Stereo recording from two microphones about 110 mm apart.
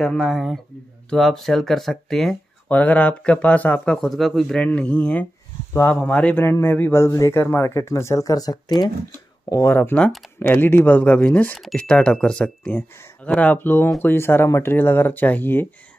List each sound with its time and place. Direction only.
0.0 s speech: centre (ahead or behind)
2.7 s a man's voice: 15° left (ahead or behind); by 8.9 s 40° left (ahead or behind)
9.5 s a man's voice: 25° left (ahead or behind)
9.8 s a man's voice: 10° left (ahead or behind)